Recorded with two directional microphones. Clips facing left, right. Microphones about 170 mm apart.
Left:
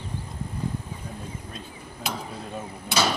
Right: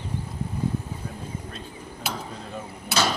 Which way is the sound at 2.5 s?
10° left (ahead or behind).